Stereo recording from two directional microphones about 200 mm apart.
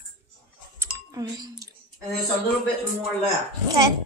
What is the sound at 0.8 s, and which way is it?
Chink, 15° right (ahead or behind).